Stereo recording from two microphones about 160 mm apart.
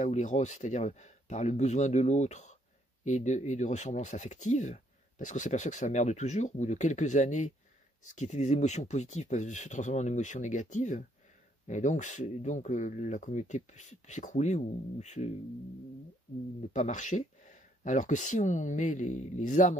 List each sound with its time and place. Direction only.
0.0 s speech: 50° left (ahead or behind)
16.7 s speech: 50° left (ahead or behind)